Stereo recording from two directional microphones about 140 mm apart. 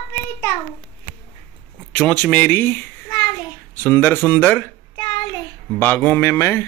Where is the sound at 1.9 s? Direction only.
10° left (ahead or behind).